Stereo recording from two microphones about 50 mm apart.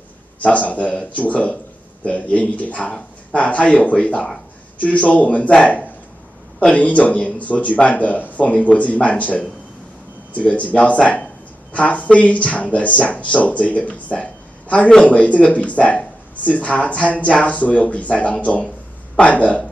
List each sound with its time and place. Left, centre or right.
0.4 s speech: left